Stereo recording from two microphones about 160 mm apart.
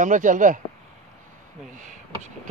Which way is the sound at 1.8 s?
50° right (ahead or behind).